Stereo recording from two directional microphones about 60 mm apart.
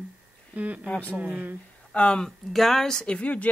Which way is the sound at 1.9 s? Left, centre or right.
Centre.